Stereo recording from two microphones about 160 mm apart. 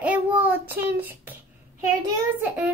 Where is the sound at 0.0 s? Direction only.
10° right (ahead or behind).